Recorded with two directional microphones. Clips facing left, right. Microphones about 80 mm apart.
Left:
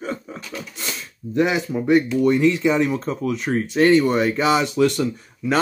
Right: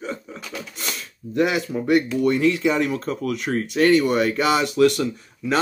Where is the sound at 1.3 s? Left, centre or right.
Left.